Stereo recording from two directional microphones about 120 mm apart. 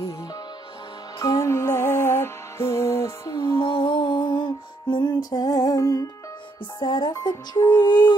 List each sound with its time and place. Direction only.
1.2 s music: 25° left (ahead or behind)
3.5 s music: 45° left (ahead or behind)